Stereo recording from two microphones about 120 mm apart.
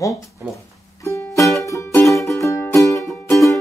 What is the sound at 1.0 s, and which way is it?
Music, 25° left (ahead or behind).